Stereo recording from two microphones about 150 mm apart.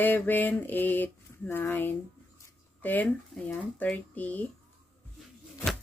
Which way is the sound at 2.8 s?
10° left (ahead or behind).